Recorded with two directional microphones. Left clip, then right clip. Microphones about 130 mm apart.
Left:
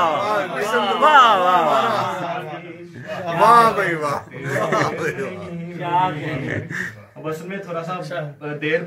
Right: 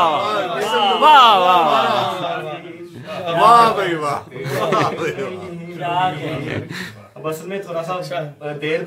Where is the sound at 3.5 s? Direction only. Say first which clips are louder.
Right 2 dB; 10° right (ahead or behind).